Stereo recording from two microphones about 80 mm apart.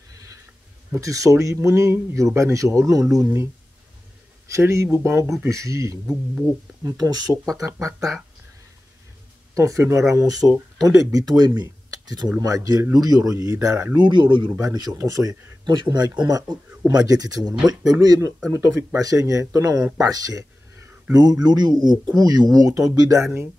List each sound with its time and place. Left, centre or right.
0.9 s speech: right
4.5 s speech: right
7.0 s speech: right
7.5 s speech: right
9.6 s speech: right
13.9 s speech: right
14.6 s speech: right
15.0 s speech: right